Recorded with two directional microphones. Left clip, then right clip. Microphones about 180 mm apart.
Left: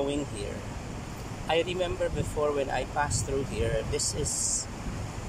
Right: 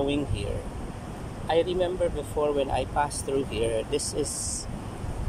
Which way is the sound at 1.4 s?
15° right (ahead or behind).